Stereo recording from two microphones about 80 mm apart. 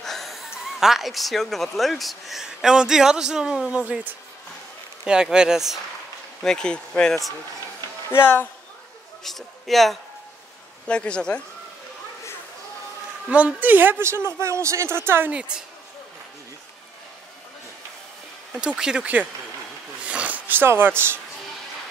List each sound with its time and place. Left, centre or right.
0.0 s speech: centre
5.0 s speech: centre
6.4 s speech: centre
8.1 s speech: left
9.2 s a man's voice: centre
10.9 s speech: centre
13.3 s a woman's voice: centre
15.3 s speech: centre
18.5 s speech: centre
20.0 s a sound: centre